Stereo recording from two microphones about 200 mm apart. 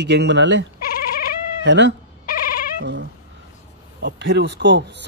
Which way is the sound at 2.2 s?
45° left (ahead or behind).